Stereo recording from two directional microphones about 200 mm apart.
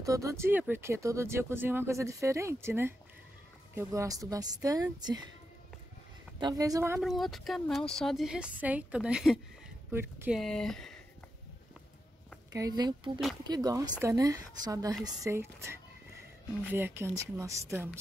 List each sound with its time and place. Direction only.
0.0 s speech: 15° right (ahead or behind)
6.4 s speech: 15° right (ahead or behind)
7.0 s speech: centre (ahead or behind)
10.4 s speech: centre (ahead or behind)
12.5 s speech: 20° right (ahead or behind)